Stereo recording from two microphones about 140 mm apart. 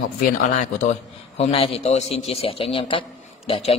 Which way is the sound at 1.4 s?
40° left (ahead or behind).